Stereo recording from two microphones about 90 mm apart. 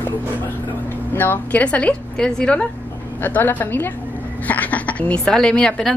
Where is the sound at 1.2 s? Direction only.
20° left (ahead or behind).